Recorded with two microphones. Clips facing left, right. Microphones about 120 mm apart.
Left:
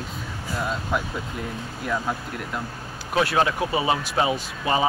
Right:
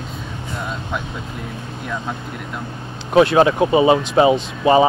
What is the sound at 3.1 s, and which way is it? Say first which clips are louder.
Speech: right 9 dB; 25° right (ahead or behind).